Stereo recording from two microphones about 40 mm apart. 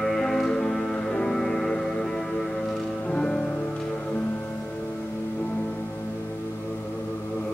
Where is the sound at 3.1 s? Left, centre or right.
Left.